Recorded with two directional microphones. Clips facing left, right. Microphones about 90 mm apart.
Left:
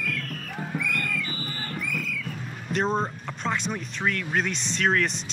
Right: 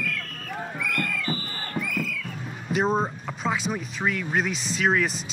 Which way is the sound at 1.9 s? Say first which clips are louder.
Right 2 dB; centre (ahead or behind).